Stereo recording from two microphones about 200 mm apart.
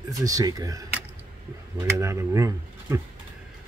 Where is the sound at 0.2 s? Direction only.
15° right (ahead or behind).